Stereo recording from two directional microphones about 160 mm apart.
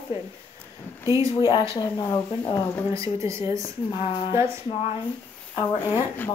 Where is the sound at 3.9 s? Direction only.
30° left (ahead or behind).